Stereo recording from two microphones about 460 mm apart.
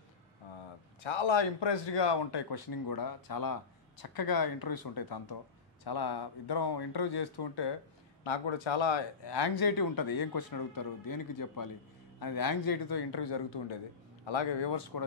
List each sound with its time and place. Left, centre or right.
1.0 s speech: left
8.2 s speech: left